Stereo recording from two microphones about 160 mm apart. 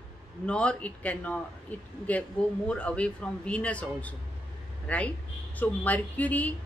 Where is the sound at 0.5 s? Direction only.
5° left (ahead or behind).